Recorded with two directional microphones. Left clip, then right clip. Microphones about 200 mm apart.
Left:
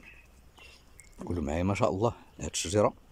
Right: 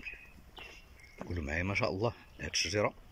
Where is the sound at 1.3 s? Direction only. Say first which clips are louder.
Left 3 dB; 25° left (ahead or behind).